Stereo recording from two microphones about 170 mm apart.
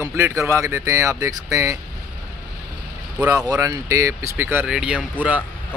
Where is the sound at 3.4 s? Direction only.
20° right (ahead or behind).